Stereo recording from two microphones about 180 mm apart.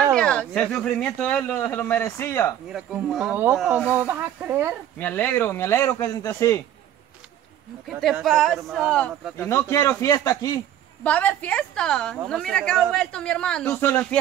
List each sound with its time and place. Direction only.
0.1 s speech: 5° left (ahead or behind)
2.7 s speech: 5° right (ahead or behind)
4.9 s speech: 10° left (ahead or behind)
7.9 s speech: centre (ahead or behind); by 10.6 s 20° left (ahead or behind)
11.1 s speech: 5° left (ahead or behind)